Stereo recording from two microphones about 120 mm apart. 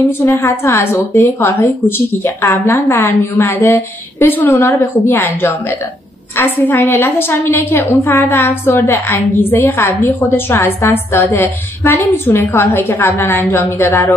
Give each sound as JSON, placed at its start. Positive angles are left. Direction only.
{"t": 0.2, "sound": "a woman's voice", "side_deg": 20}